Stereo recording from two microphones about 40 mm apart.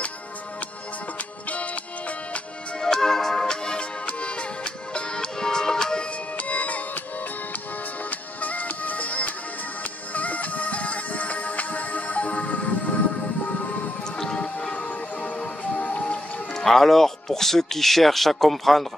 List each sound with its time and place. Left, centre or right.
2.8 s music: centre
4.0 s music: left
6.3 s music: left
8.4 s music: left
14.3 s music: left
16.5 s speech: centre